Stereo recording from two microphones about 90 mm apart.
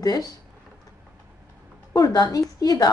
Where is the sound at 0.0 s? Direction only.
45° left (ahead or behind).